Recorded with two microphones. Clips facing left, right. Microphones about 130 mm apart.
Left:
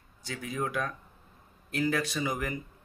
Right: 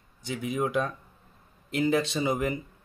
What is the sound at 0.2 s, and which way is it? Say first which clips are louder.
Speech: right 5 dB; 20° right (ahead or behind).